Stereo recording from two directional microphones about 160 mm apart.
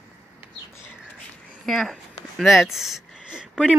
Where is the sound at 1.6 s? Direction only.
Centre (ahead or behind).